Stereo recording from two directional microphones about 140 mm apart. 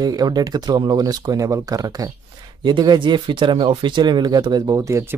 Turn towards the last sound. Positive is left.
turn(degrees=-20)  # may be behind; listen again after turning